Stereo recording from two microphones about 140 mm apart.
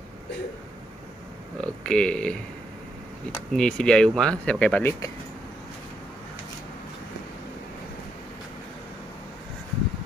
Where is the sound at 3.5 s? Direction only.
5° left (ahead or behind).